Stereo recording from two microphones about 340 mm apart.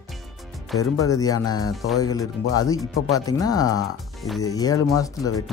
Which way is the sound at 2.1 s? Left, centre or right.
Centre.